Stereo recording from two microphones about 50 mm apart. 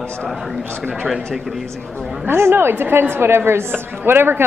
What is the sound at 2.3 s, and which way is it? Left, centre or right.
Speech, right.